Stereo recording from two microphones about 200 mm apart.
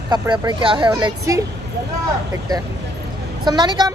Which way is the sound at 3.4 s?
20° right (ahead or behind).